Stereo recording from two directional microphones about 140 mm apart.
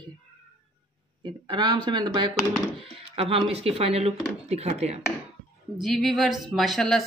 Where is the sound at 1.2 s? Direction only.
35° right (ahead or behind).